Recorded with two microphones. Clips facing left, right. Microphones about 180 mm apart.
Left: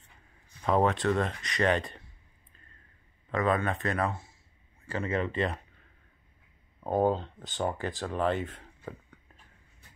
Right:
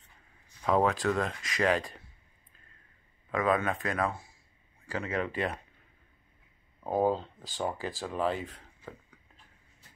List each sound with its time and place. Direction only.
0.7 s speech: centre (ahead or behind)
3.3 s speech: 5° right (ahead or behind)
4.1 s a sound: 20° left (ahead or behind)
4.8 s speech: 5° right (ahead or behind)
6.8 s speech: 5° right (ahead or behind)